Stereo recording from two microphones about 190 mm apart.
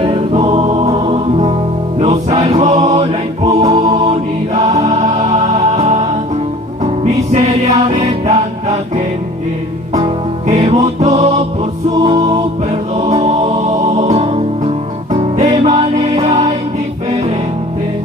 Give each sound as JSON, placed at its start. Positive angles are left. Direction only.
{"t": 0.0, "sound": "music", "side_deg": -30}
{"t": 2.8, "sound": "music", "side_deg": -20}
{"t": 3.4, "sound": "mantra", "side_deg": -35}
{"t": 7.3, "sound": "music", "side_deg": -35}
{"t": 10.7, "sound": "music", "side_deg": -35}
{"t": 11.9, "sound": "music", "side_deg": -25}
{"t": 12.9, "sound": "music", "side_deg": -35}
{"t": 15.6, "sound": "music", "side_deg": -35}